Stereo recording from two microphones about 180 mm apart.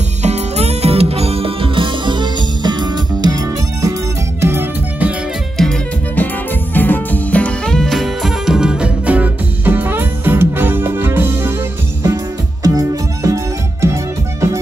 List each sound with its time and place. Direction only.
0.2 s music: 35° right (ahead or behind); by 5.1 s 15° right (ahead or behind)
5.6 s music: 5° left (ahead or behind); by 11.5 s 15° right (ahead or behind)
12.6 s music: 20° right (ahead or behind)